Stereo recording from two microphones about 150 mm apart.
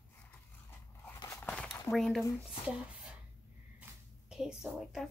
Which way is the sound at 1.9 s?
Centre (ahead or behind).